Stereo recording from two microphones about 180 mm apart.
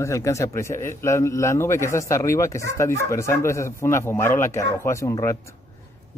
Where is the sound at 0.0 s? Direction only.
15° left (ahead or behind).